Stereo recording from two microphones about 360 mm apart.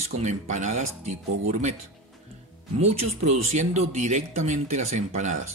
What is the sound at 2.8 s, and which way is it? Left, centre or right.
Speech, centre.